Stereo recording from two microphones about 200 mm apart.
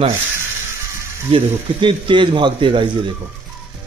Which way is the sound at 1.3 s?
25° right (ahead or behind).